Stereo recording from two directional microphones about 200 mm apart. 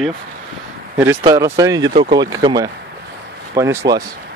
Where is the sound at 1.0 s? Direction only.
15° right (ahead or behind).